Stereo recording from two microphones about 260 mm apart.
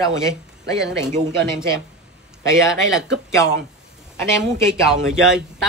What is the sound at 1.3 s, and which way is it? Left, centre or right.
Speech, centre.